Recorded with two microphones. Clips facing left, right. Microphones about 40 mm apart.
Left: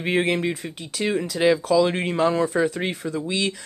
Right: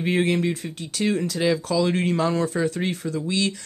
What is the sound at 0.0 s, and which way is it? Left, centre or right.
Speech, centre.